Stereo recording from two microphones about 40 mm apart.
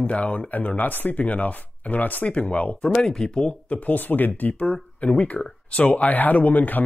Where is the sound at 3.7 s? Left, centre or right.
Left.